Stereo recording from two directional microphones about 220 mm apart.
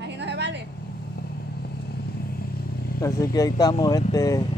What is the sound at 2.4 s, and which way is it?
Vehicle, 45° left (ahead or behind).